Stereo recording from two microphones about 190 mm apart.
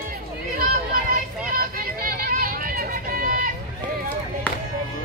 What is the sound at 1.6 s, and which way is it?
Vehicle, 50° right (ahead or behind).